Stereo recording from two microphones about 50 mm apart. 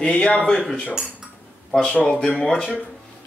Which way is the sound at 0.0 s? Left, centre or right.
Left.